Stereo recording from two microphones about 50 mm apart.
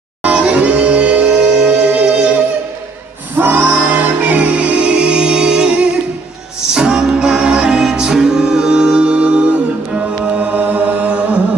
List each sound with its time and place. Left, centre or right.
0.2 s music: right
3.3 s music: right